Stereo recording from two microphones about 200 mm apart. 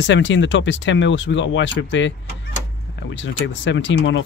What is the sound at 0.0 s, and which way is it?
Speech, 65° left (ahead or behind).